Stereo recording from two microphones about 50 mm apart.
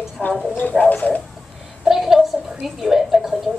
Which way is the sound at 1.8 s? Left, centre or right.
Centre.